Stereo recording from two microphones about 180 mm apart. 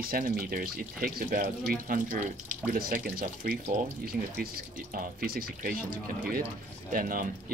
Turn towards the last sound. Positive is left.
turn(degrees=-50)  # may be behind; listen again after turning